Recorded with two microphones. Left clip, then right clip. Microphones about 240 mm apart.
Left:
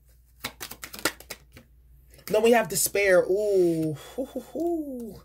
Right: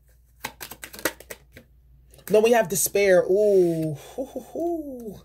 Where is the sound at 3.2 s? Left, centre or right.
Centre.